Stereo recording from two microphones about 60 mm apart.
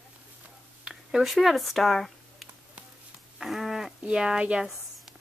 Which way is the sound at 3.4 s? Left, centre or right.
Centre.